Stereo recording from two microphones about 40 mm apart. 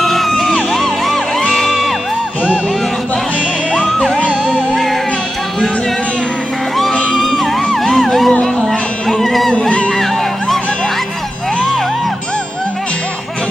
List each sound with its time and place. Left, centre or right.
0.0 s music: centre
7.1 s music: centre
9.5 s a sound: left